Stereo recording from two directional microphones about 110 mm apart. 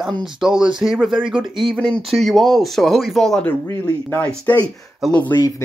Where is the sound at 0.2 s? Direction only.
5° right (ahead or behind).